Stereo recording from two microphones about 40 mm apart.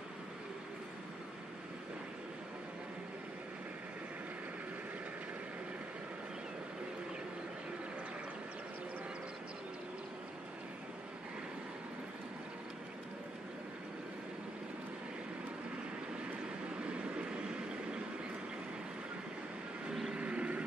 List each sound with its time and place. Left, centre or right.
16.8 s vehicle: right
19.9 s vehicle: centre
20.2 s vehicle: right